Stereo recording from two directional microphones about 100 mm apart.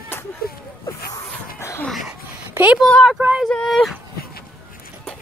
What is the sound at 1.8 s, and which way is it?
Dog, centre (ahead or behind).